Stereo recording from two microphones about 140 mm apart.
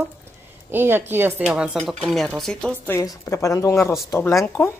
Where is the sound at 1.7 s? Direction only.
5° left (ahead or behind).